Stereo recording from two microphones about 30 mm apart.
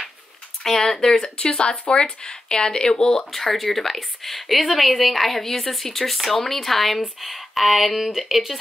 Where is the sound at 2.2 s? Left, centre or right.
Left.